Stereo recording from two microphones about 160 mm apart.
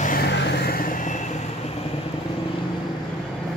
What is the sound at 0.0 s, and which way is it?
Vehicle, 70° left (ahead or behind).